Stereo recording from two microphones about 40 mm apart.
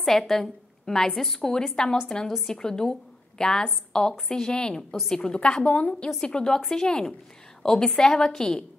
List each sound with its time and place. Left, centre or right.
0.0 s a woman's voice: centre
1.5 s a woman's voice: centre
5.8 s a woman's voice: left
6.2 s a woman's voice: centre